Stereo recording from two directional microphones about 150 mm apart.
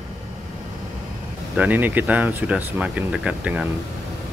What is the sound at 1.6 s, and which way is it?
Speech, 10° right (ahead or behind).